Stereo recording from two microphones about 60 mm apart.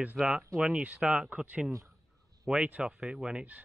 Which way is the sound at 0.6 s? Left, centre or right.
Centre.